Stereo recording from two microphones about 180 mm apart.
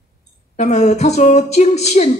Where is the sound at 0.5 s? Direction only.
40° left (ahead or behind).